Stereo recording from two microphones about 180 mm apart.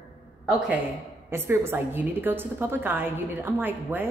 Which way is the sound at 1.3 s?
15° right (ahead or behind).